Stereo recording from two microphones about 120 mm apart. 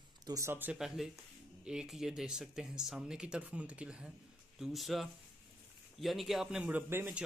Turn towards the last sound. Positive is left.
turn(degrees=-15)  # may be behind; listen again after turning